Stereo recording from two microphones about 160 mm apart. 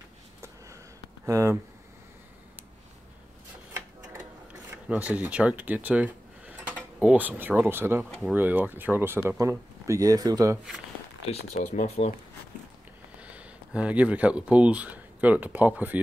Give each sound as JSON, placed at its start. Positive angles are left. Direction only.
{"t": 1.2, "sound": "speech", "side_deg": -15}
{"t": 4.8, "sound": "speech", "side_deg": -10}
{"t": 11.2, "sound": "speech", "side_deg": 45}
{"t": 13.2, "sound": "speech", "side_deg": -10}